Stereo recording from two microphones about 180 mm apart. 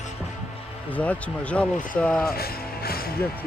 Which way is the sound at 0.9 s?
10° left (ahead or behind).